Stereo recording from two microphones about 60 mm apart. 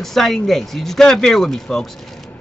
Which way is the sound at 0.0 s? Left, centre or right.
Centre.